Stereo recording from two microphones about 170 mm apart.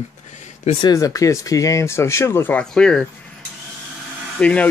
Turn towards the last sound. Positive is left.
turn(degrees=10)  # may be behind; listen again after turning